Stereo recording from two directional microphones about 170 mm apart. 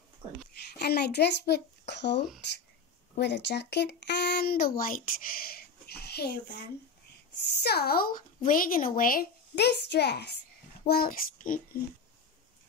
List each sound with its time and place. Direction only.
0.7 s a child's voice: 70° left (ahead or behind)
7.4 s a woman's voice: 70° left (ahead or behind)
10.9 s a woman's voice: 60° left (ahead or behind)